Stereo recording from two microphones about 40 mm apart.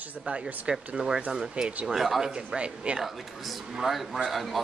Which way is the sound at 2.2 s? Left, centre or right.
Centre.